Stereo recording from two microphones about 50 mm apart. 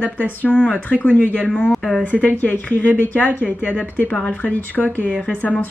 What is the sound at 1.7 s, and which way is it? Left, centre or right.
Speech, centre.